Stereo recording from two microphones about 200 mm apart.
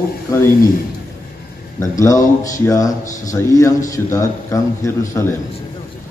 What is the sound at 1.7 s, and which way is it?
Speech, 15° left (ahead or behind).